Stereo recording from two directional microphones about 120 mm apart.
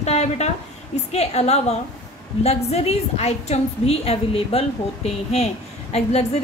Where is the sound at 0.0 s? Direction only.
65° left (ahead or behind).